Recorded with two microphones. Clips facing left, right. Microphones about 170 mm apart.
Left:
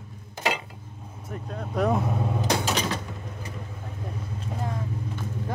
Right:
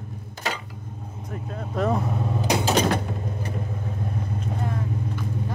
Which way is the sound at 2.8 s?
55° right (ahead or behind).